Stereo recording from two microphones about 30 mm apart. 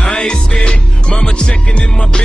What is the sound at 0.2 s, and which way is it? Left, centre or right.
Music, left.